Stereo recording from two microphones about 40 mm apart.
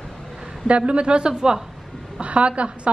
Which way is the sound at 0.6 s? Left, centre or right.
Right.